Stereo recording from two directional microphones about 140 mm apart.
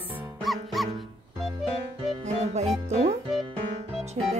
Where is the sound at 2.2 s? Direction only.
55° right (ahead or behind).